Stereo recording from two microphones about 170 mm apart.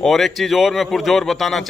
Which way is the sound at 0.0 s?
Centre (ahead or behind).